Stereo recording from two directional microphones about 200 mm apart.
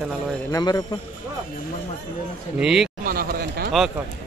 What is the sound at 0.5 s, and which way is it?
Speech, 20° left (ahead or behind).